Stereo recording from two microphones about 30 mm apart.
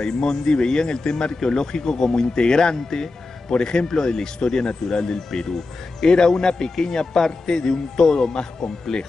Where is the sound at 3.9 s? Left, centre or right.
Left.